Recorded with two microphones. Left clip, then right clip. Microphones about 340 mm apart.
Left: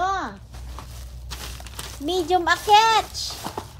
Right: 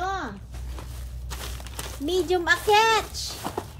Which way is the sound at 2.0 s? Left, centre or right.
Centre.